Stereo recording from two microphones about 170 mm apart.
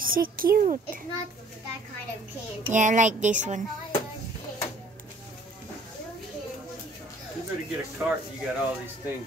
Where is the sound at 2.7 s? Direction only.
45° right (ahead or behind).